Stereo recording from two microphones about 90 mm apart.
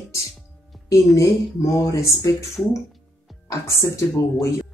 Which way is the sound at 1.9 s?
35° left (ahead or behind).